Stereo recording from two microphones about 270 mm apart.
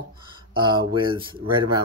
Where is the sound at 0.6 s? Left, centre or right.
Centre.